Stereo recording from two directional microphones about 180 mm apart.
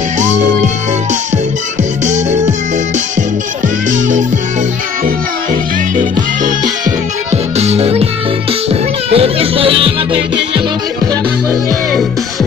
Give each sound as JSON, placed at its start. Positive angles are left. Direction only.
{"t": 0.2, "sound": "music", "side_deg": -45}
{"t": 2.0, "sound": "music", "side_deg": -40}
{"t": 7.2, "sound": "music", "side_deg": -35}
{"t": 9.1, "sound": "music", "side_deg": -30}